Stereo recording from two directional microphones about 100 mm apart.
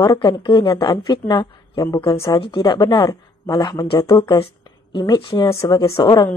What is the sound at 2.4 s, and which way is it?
A woman's voice, 50° left (ahead or behind).